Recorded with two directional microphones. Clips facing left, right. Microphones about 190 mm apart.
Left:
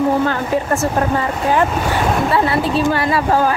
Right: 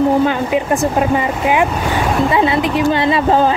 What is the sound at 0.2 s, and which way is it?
Speech, 15° right (ahead or behind).